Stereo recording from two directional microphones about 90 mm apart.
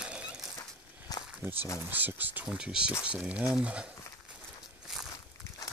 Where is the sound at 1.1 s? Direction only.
45° left (ahead or behind).